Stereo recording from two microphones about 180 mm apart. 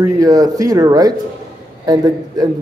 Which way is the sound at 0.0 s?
20° right (ahead or behind).